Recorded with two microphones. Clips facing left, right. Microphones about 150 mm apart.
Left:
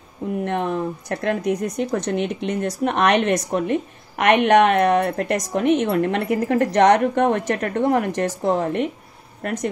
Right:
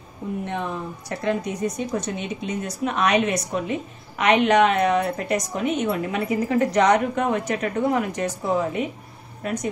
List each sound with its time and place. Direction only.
0.5 s speech: 70° left (ahead or behind)